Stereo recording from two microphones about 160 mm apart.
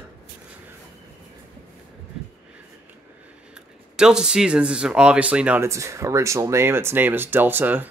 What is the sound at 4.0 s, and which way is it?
Speech, 5° right (ahead or behind).